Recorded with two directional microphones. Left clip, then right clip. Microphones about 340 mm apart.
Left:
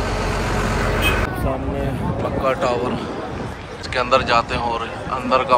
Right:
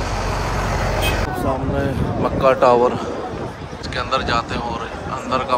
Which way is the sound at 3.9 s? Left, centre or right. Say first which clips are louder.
Left 4 dB; centre.